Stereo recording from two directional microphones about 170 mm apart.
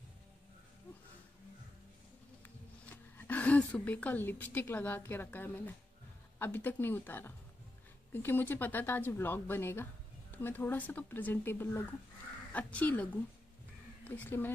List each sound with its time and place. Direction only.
2.9 s a woman's voice: 10° left (ahead or behind)